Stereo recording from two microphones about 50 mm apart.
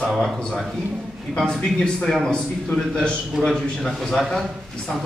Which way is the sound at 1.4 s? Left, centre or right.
Centre.